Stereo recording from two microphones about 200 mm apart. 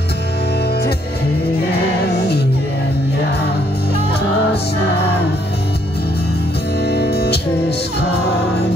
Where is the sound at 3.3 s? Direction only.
55° left (ahead or behind).